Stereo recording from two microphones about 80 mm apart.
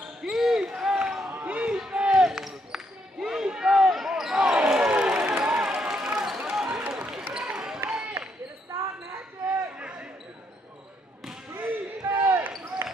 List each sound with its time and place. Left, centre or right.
0.2 s basketball bounce: centre
1.3 s basketball bounce: centre
6.9 s a sound: centre
8.7 s basketball bounce: right
9.8 s basketball bounce: centre
11.5 s basketball bounce: right